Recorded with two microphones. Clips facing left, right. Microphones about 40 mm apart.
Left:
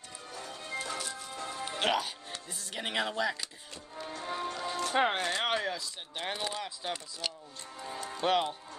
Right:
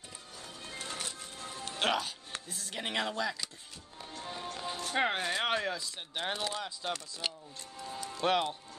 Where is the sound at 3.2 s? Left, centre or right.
Centre.